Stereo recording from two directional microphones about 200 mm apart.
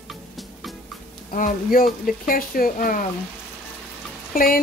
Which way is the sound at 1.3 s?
40° left (ahead or behind).